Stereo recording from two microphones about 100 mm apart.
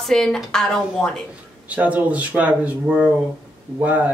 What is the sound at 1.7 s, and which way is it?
A man's voice, 15° right (ahead or behind).